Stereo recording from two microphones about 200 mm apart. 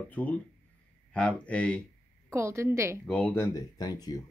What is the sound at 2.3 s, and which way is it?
Speech, 15° right (ahead or behind).